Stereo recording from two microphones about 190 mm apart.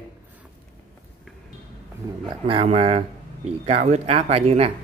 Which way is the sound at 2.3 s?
30° right (ahead or behind).